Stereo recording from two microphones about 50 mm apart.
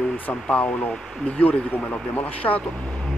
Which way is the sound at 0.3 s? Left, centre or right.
Left.